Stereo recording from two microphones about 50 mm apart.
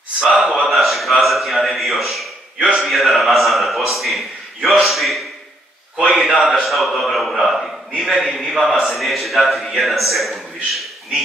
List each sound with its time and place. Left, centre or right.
0.2 s speech: centre
0.6 s a sound: centre
1.2 s a man's voice: centre
5.9 s a man's voice: centre
6.3 s a man's voice: centre